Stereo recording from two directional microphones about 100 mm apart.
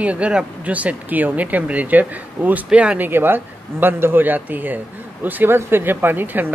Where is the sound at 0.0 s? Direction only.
10° right (ahead or behind).